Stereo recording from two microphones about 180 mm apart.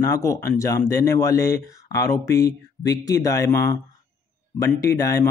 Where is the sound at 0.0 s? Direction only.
15° left (ahead or behind).